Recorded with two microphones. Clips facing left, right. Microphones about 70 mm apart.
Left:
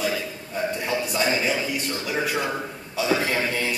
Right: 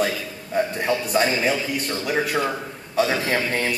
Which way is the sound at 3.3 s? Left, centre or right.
Right.